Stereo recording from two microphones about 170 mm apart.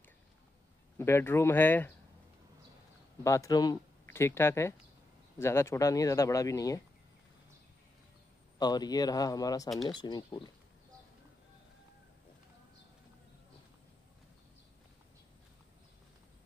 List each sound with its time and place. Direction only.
0.9 s speech: 15° left (ahead or behind)
3.3 s speech: 20° left (ahead or behind)
8.5 s speech: 25° left (ahead or behind)